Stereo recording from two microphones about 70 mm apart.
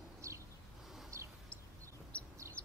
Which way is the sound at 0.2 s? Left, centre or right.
Right.